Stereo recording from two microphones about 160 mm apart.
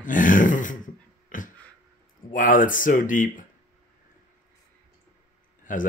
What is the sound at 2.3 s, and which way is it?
Speech, 60° left (ahead or behind).